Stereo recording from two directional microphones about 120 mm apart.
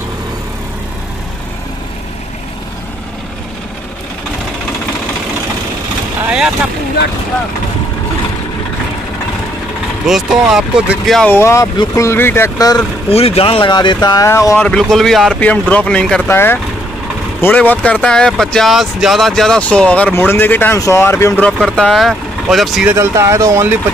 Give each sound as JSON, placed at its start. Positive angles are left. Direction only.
{"t": 6.2, "sound": "boat", "side_deg": -5}
{"t": 10.0, "sound": "speech", "side_deg": -5}
{"t": 11.2, "sound": "speech", "side_deg": 20}
{"t": 12.5, "sound": "speech", "side_deg": 30}
{"t": 13.1, "sound": "speech", "side_deg": 55}
{"t": 14.0, "sound": "speech", "side_deg": 30}
{"t": 14.6, "sound": "speech", "side_deg": 5}
{"t": 16.3, "sound": "speech", "side_deg": 20}
{"t": 21.5, "sound": "speech", "side_deg": 5}
{"t": 22.9, "sound": "speech", "side_deg": -25}